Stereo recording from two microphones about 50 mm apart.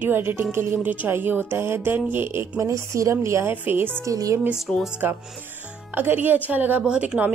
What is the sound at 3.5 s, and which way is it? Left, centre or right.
Speech, right.